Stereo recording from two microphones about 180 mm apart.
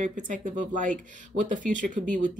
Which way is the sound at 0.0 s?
45° right (ahead or behind).